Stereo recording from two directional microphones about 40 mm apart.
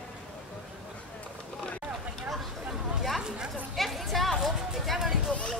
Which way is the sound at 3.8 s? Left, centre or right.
Centre.